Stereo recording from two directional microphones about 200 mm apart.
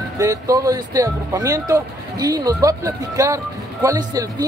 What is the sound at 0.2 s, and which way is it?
Speech, 15° right (ahead or behind).